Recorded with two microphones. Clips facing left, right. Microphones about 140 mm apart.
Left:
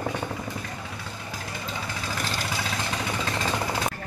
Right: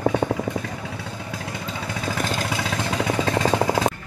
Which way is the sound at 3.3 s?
65° right (ahead or behind).